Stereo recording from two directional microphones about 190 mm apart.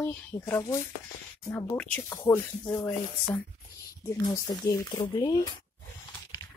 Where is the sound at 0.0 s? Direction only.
10° left (ahead or behind).